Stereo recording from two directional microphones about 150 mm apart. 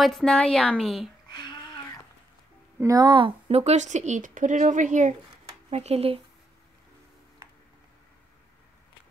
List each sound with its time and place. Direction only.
0.0 s a woman's voice: 5° left (ahead or behind)
1.3 s a sound: 30° left (ahead or behind)
2.8 s speech: 25° right (ahead or behind); by 6.2 s 40° right (ahead or behind)